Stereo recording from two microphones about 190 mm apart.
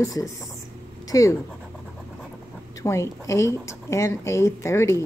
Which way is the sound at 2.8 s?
15° left (ahead or behind).